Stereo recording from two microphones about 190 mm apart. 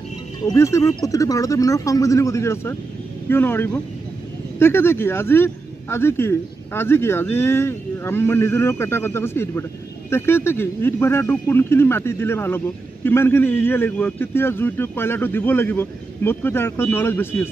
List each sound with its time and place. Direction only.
0.5 s speech: 15° left (ahead or behind)